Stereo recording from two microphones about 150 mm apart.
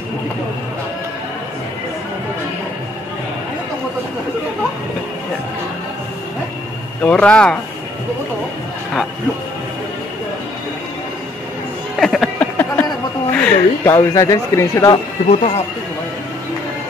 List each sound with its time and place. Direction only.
7.0 s speech: 10° left (ahead or behind)
12.0 s a sound: 5° left (ahead or behind)
13.9 s speech: 20° left (ahead or behind)
15.2 s speech: 50° left (ahead or behind)